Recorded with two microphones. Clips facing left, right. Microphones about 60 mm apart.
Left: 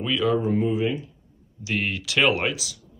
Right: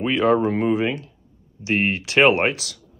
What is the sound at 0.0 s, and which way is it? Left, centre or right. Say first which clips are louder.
Speech: right 5 dB; right.